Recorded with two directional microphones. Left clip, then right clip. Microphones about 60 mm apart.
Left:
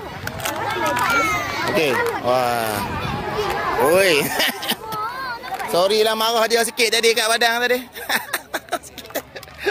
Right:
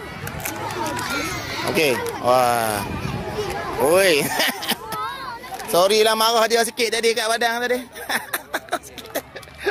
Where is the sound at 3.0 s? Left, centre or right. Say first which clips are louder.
Left 4 dB; left.